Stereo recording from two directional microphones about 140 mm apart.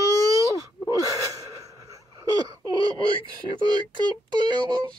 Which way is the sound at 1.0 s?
25° right (ahead or behind).